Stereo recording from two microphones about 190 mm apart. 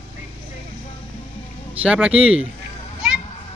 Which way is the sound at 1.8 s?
5° right (ahead or behind).